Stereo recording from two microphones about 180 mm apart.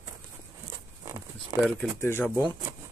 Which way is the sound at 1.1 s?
15° right (ahead or behind).